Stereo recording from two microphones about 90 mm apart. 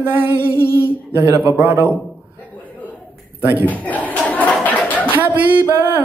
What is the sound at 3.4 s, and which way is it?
Speech, 20° right (ahead or behind).